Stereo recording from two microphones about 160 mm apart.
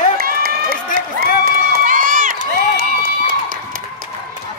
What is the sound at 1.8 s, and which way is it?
Run, 55° right (ahead or behind).